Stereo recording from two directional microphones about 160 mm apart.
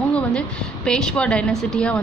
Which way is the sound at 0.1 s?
5° left (ahead or behind).